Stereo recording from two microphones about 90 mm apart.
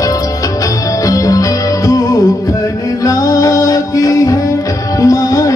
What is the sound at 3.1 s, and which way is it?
Music, 40° left (ahead or behind).